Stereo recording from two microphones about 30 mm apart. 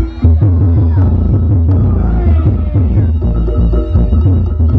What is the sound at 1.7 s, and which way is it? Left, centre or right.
Music, left.